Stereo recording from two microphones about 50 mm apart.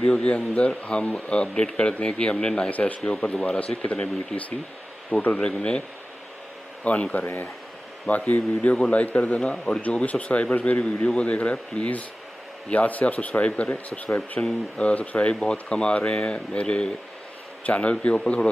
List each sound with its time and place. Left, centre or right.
0.0 s speech: left
5.1 s speech: left
5.4 s speech: centre
8.3 s speech: left
18.1 s a man's voice: centre